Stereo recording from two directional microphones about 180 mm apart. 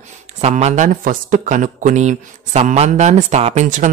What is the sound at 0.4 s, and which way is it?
Speech, 35° right (ahead or behind).